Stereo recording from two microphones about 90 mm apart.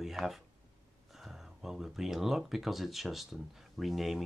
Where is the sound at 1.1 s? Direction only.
5° right (ahead or behind).